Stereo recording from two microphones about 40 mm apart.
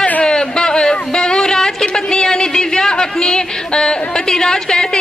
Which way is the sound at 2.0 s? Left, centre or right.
Centre.